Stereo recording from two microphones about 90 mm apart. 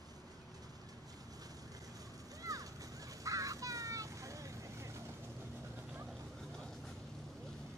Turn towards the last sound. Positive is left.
turn(degrees=5)  # may be behind; listen again after turning